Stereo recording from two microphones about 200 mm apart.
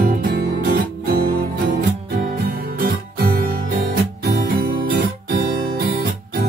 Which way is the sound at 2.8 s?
50° right (ahead or behind).